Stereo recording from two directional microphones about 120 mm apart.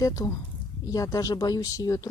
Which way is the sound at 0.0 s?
30° left (ahead or behind).